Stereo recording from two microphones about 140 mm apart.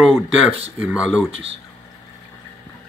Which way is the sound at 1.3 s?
45° right (ahead or behind).